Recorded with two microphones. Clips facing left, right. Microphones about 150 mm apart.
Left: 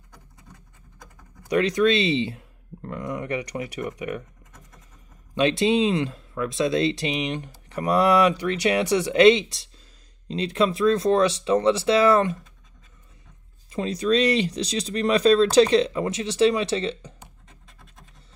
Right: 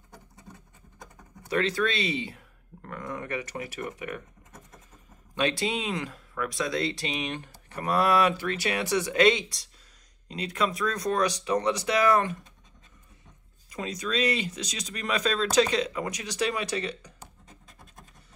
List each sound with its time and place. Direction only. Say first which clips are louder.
1.5 s speech: left 7 dB; 15° left (ahead or behind)
5.3 s speech: left 8 dB; 20° left (ahead or behind)
13.7 s speech: left 10 dB; 30° left (ahead or behind)